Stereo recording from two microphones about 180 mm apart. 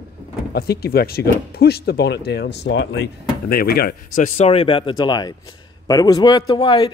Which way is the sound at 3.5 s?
55° left (ahead or behind).